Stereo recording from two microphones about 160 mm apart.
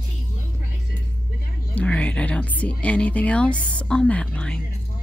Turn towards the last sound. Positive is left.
turn(degrees=5)  # may be behind; listen again after turning